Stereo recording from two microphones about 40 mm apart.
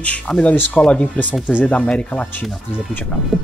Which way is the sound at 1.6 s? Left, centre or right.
Left.